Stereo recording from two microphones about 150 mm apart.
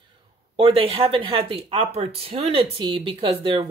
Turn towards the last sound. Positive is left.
turn(degrees=-35)  # may be behind; listen again after turning